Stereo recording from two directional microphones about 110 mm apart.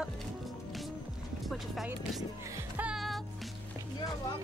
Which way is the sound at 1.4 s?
Centre (ahead or behind).